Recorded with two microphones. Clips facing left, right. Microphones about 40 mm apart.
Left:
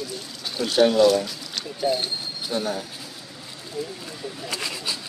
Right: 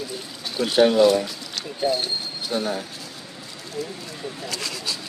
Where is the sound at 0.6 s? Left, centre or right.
Centre.